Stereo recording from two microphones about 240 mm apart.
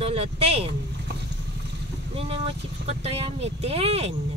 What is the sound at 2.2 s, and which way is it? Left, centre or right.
Speech, right.